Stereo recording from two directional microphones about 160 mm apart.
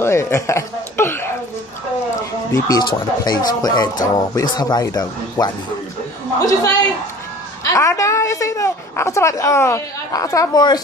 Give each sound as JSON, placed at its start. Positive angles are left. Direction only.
{"t": 0.0, "sound": "speech", "side_deg": 15}
{"t": 2.5, "sound": "a woman's voice", "side_deg": 25}